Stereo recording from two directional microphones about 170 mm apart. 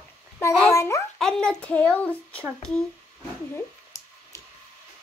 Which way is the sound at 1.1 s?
5° left (ahead or behind).